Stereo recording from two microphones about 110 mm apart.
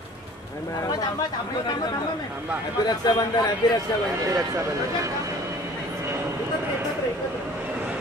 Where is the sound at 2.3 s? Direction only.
15° right (ahead or behind).